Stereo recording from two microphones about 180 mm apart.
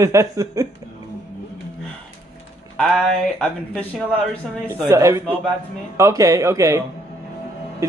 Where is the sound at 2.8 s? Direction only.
5° left (ahead or behind).